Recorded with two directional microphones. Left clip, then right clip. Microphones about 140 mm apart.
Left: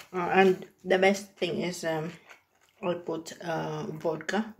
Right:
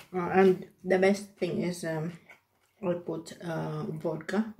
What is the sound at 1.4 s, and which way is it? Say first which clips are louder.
Speech: left 2 dB; 30° right (ahead or behind).